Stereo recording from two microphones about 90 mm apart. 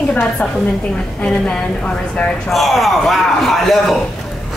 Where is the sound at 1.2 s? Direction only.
10° left (ahead or behind).